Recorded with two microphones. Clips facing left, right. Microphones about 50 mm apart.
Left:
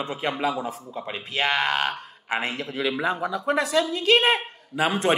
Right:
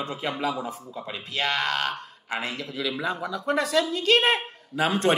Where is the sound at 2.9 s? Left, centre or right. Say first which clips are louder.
Left 3 dB; centre.